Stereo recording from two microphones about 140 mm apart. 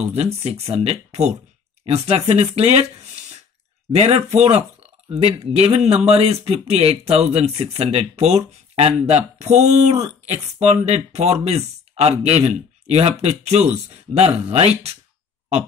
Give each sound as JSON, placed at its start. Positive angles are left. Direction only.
{"t": 0.2, "sound": "speech", "side_deg": -45}